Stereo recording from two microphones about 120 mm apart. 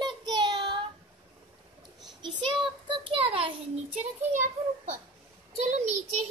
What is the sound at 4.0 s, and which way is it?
A child's voice, 85° right.